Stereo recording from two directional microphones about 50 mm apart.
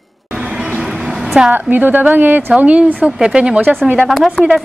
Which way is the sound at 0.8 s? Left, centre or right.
Centre.